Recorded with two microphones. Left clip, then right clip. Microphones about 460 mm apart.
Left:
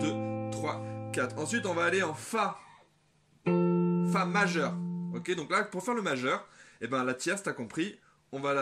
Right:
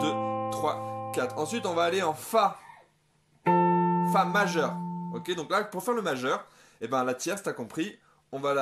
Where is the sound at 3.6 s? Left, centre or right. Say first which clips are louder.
Right 7 dB; centre.